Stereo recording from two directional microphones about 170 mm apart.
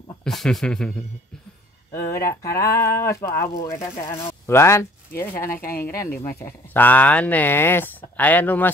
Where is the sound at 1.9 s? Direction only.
15° left (ahead or behind).